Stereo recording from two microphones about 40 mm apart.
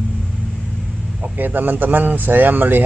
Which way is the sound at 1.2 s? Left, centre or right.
Right.